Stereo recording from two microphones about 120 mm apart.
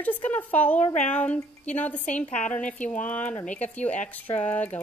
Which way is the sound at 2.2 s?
90° left.